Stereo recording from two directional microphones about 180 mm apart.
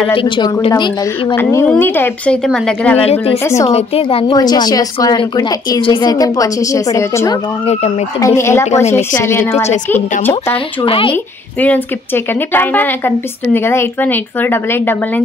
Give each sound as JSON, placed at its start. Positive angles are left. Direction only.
{"t": 0.1, "sound": "a woman's voice", "side_deg": 30}
{"t": 1.3, "sound": "a woman's voice", "side_deg": 10}
{"t": 3.0, "sound": "a woman's voice", "side_deg": 30}
{"t": 3.4, "sound": "a woman's voice", "side_deg": 15}
{"t": 3.7, "sound": "a woman's voice", "side_deg": 30}
{"t": 4.4, "sound": "a woman's voice", "side_deg": 20}
{"t": 9.5, "sound": "a woman's voice", "side_deg": 40}
{"t": 9.8, "sound": "a woman's voice", "side_deg": 10}
{"t": 10.5, "sound": "a woman's voice", "side_deg": 30}
{"t": 12.5, "sound": "a woman's voice", "side_deg": 10}